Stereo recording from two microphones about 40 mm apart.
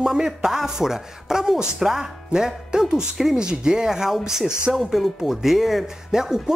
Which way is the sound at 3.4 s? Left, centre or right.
Centre.